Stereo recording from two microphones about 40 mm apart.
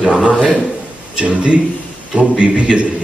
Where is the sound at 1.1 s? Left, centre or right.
Right.